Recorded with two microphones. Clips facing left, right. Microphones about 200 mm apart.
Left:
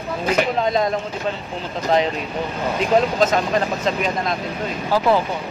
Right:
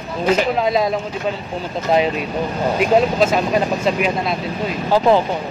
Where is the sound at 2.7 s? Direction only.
10° right (ahead or behind).